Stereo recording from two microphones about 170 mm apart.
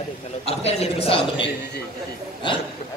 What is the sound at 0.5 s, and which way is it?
Speech, 35° left (ahead or behind).